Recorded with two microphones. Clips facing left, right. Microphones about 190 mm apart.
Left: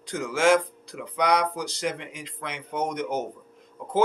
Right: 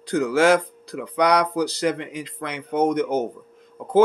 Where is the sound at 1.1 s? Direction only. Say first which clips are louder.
Right 4 dB; 70° right (ahead or behind).